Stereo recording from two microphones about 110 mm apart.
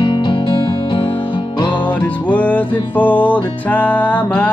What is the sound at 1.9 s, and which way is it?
Music, 15° left (ahead or behind).